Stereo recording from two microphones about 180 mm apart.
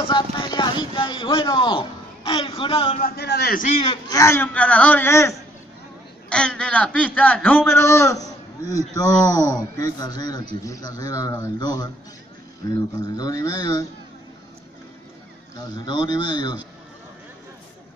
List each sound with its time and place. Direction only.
0.0 s speech: 25° left (ahead or behind)
3.0 s a man's voice: 65° left (ahead or behind)
3.8 s a man's voice: 30° left (ahead or behind)
4.2 s a man's voice: 15° left (ahead or behind)
12.9 s a man's voice: 20° left (ahead or behind)
15.5 s a man's voice: 25° left (ahead or behind)